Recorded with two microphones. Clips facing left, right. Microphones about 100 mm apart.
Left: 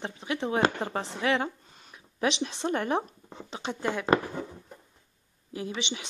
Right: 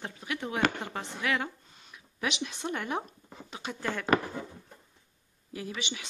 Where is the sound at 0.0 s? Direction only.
25° left (ahead or behind).